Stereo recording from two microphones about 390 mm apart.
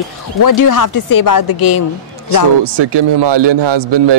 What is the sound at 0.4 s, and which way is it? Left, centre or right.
Speech, left.